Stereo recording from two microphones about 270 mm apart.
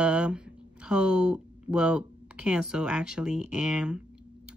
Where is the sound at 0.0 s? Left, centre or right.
Centre.